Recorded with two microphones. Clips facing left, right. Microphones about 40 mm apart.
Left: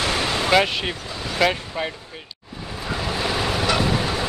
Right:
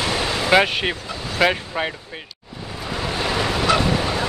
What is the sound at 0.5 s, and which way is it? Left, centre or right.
Speech, centre.